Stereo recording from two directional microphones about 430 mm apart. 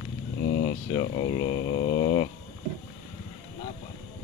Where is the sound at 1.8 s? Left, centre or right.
Centre.